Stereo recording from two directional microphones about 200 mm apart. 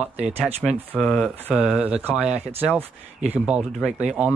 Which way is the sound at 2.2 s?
35° right (ahead or behind).